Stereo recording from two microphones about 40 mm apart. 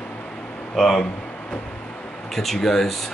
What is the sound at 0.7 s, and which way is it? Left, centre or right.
Speech, centre.